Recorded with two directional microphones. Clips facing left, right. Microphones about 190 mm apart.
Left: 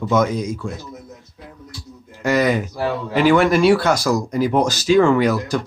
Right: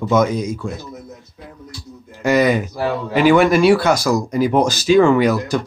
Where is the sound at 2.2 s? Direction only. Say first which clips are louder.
Right 2 dB; 15° right (ahead or behind).